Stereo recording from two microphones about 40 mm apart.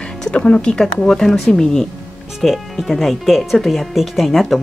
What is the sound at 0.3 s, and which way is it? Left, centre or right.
Speech, left.